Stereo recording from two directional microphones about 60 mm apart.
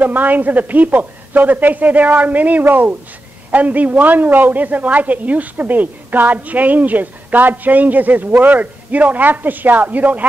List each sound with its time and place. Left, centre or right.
0.0 s a woman's voice: right